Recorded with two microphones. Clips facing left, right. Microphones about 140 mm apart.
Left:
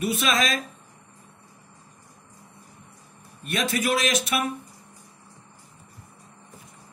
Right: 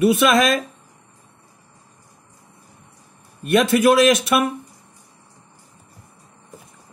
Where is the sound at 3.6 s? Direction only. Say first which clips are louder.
Right 10 dB; 65° right (ahead or behind).